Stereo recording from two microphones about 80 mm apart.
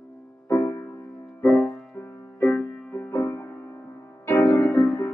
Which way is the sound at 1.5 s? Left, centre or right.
Left.